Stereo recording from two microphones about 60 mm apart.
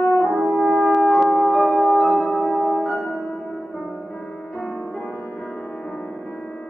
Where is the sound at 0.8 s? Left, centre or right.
Centre.